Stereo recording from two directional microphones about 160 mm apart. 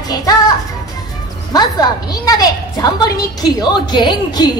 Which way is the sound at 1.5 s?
25° left (ahead or behind).